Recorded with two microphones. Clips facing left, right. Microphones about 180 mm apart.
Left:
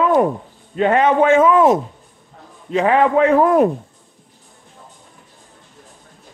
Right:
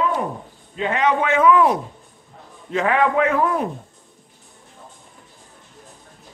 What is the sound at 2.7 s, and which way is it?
Speech, 20° left (ahead or behind).